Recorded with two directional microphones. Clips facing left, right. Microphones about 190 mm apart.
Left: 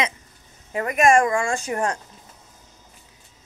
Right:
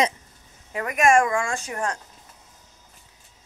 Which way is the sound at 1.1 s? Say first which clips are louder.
Left 1 dB; 15° left (ahead or behind).